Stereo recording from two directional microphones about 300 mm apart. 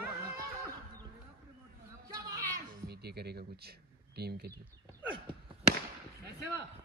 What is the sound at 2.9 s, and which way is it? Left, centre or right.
Speech, right.